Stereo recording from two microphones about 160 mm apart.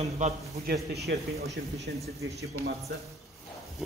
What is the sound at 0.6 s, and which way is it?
Speech, 90° right.